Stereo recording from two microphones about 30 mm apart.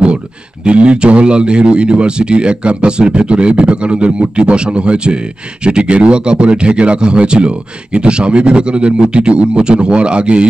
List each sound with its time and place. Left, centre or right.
0.7 s speech: right